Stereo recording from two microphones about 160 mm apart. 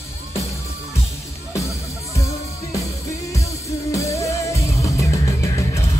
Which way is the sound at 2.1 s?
20° left (ahead or behind).